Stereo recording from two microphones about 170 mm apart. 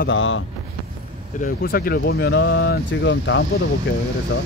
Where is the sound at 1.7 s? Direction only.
60° left (ahead or behind); by 3.4 s 90° left.